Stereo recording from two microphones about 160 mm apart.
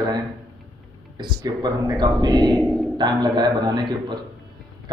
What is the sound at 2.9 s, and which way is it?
A man's voice, 25° right (ahead or behind).